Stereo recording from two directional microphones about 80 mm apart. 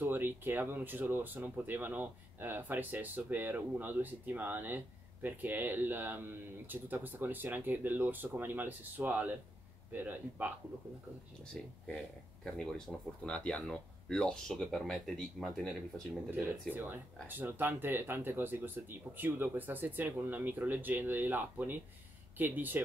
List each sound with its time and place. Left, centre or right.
0.0 s speech: right
11.6 s speech: centre
16.3 s speech: right